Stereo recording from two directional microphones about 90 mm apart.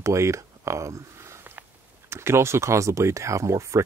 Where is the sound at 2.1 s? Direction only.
30° right (ahead or behind).